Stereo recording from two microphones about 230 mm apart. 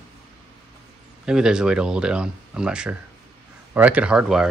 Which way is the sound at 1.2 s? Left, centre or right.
Centre.